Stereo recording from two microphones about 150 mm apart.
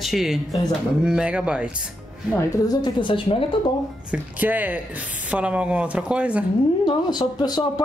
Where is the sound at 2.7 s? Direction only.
30° left (ahead or behind).